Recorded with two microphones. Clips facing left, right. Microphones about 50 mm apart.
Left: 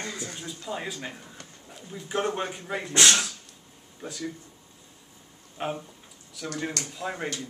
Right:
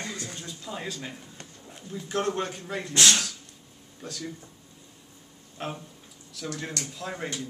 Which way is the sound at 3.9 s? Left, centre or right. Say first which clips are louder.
Left 2 dB; centre.